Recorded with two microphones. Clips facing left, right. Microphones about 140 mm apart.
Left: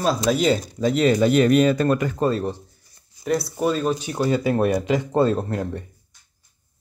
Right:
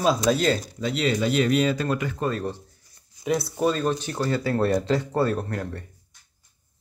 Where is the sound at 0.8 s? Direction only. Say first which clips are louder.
Left 7 dB; 45° left (ahead or behind).